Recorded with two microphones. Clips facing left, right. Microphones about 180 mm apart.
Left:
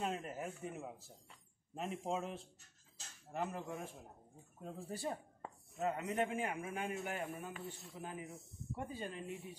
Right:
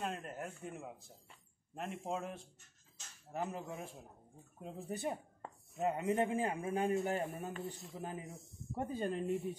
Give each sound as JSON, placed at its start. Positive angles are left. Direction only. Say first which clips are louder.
{"t": 0.0, "sound": "speech", "louder": "left 1 dB", "side_deg": 5}
{"t": 4.6, "sound": "a man's voice", "louder": "right 3 dB", "side_deg": -20}